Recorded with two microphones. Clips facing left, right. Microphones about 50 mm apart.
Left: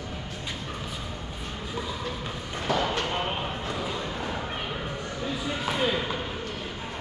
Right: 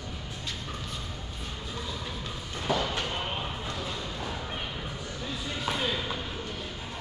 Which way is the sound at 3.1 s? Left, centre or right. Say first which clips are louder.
Left 4 dB; centre.